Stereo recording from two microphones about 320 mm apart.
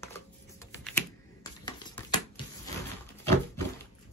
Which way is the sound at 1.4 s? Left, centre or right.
Centre.